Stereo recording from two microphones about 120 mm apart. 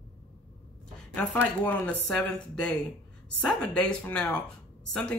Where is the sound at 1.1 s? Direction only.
15° left (ahead or behind).